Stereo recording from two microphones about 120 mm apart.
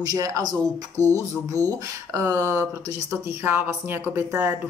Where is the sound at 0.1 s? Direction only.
30° right (ahead or behind).